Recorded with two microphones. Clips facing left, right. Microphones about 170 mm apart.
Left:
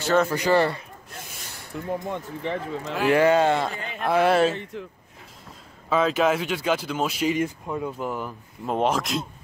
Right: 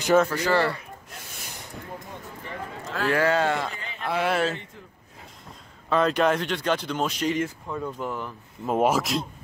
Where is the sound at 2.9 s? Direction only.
20° left (ahead or behind).